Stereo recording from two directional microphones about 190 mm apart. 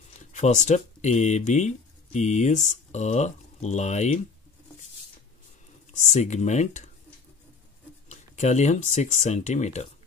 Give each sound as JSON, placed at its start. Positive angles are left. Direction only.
{"t": 0.3, "sound": "speech", "side_deg": 40}
{"t": 5.9, "sound": "speech", "side_deg": 40}
{"t": 8.1, "sound": "speech", "side_deg": 35}